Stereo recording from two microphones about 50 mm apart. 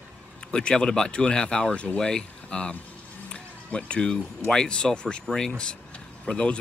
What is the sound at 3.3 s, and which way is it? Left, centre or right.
Music, left.